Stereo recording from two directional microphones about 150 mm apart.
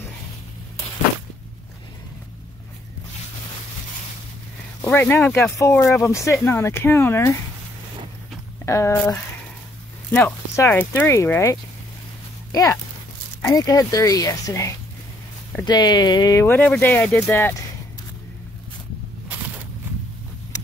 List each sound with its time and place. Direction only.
4.8 s speech: 15° left (ahead or behind)
8.6 s speech: 20° left (ahead or behind)
13.4 s speech: 25° left (ahead or behind)